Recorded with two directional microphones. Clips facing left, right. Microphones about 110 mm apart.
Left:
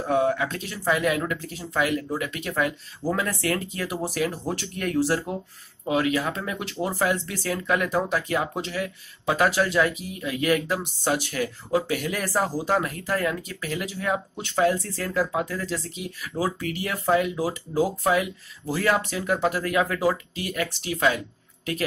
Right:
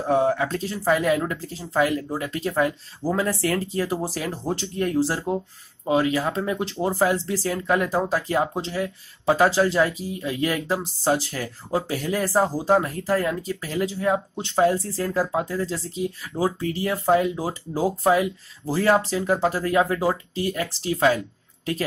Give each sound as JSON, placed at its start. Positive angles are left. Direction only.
{"t": 0.0, "sound": "speech", "side_deg": -30}